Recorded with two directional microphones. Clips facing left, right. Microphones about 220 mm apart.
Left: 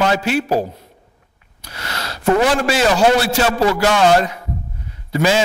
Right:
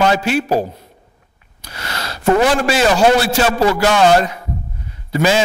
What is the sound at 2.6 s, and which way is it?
A man's voice, 15° right (ahead or behind).